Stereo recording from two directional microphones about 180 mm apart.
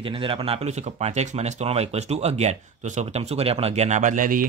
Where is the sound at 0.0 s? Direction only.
30° right (ahead or behind).